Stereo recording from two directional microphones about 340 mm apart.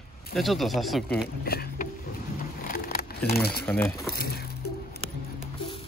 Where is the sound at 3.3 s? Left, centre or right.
Left.